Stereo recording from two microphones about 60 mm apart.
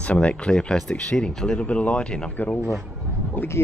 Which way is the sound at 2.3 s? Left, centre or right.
Left.